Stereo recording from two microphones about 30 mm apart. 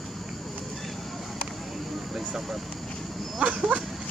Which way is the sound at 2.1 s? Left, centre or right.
Centre.